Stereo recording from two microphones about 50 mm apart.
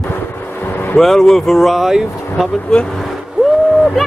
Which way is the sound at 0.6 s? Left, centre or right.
Left.